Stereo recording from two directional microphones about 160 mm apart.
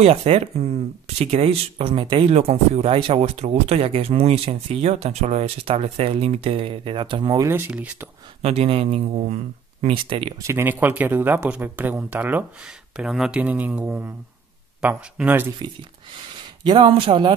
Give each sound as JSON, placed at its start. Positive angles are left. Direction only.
{"t": 0.0, "sound": "speech", "side_deg": -40}
{"t": 7.4, "sound": "speech", "side_deg": -15}
{"t": 8.4, "sound": "speech", "side_deg": -40}
{"t": 10.4, "sound": "speech", "side_deg": -15}
{"t": 16.6, "sound": "speech", "side_deg": -30}